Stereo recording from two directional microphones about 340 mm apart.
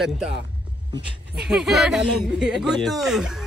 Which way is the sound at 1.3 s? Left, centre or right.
Centre.